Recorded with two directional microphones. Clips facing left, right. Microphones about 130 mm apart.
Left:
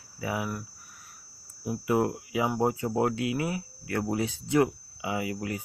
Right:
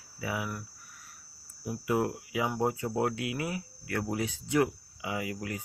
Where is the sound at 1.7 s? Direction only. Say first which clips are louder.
Left 3 dB; 25° left (ahead or behind).